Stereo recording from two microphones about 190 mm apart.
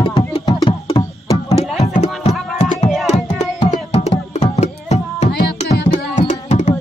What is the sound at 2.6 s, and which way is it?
Music, 35° left (ahead or behind).